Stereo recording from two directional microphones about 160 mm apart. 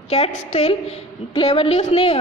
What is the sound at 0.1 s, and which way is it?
A woman's voice, 45° left (ahead or behind).